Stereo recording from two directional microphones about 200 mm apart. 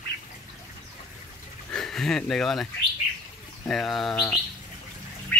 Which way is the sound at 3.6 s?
Centre (ahead or behind).